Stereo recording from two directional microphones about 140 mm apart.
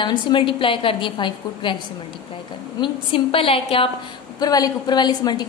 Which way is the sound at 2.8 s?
40° left (ahead or behind).